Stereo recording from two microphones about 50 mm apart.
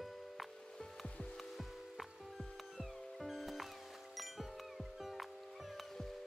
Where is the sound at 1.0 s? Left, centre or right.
Left.